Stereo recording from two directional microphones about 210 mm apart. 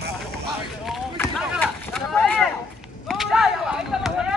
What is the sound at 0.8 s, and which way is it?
Run, 5° left (ahead or behind).